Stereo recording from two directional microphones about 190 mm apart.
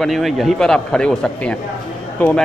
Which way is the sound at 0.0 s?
Centre (ahead or behind).